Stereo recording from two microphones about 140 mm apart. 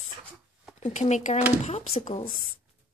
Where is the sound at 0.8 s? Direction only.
55° left (ahead or behind).